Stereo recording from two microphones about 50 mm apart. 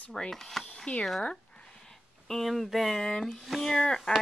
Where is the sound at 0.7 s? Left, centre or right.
Centre.